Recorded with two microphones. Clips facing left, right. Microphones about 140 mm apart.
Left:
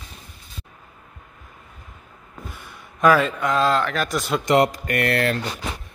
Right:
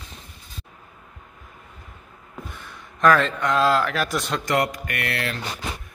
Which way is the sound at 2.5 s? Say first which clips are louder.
Even; 10° left (ahead or behind).